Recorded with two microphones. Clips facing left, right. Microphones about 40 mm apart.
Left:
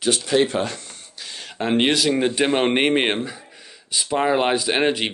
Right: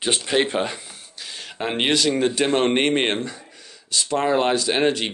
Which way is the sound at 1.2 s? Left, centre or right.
Centre.